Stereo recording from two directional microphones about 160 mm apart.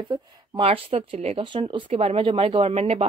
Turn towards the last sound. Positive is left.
turn(degrees=-40)  # may be behind; listen again after turning